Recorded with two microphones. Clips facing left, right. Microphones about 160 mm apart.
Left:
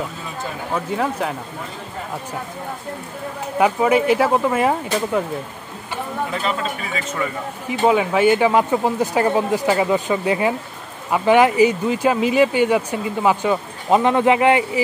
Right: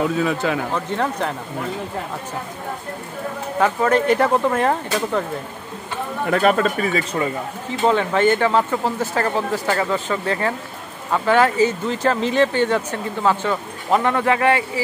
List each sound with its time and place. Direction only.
0.2 s speech: 80° right
0.7 s speech: 5° left (ahead or behind)
3.5 s speech: 10° left (ahead or behind)
6.3 s speech: 55° right (ahead or behind)
7.0 s speech: 35° right (ahead or behind)
7.8 s speech: 10° left (ahead or behind)